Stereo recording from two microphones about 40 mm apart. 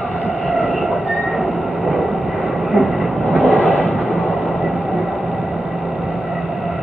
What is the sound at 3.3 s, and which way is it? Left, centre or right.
Vehicle, right.